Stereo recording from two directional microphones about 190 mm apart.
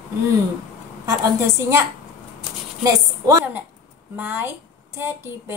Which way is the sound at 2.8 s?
20° right (ahead or behind).